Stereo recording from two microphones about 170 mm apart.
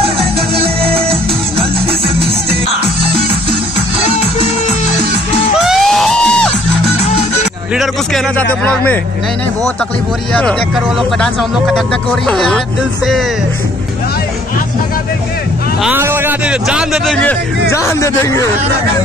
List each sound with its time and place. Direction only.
0.0 s music: 35° right (ahead or behind)
3.0 s music: 35° right (ahead or behind)
5.6 s music: centre (ahead or behind)
7.7 s a man's voice: centre (ahead or behind)
11.1 s a man's voice: 5° left (ahead or behind)
15.8 s a man's voice: 10° right (ahead or behind); by 18.4 s 15° left (ahead or behind)